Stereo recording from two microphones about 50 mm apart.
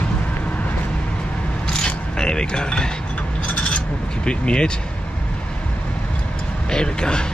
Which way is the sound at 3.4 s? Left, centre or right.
Left.